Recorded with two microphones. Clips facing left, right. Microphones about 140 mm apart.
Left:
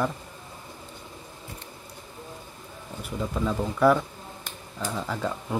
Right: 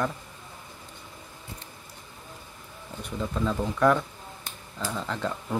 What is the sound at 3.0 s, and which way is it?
Speech, 10° left (ahead or behind).